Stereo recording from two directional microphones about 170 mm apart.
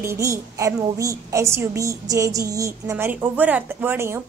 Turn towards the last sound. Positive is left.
turn(degrees=-15)  # may be behind; listen again after turning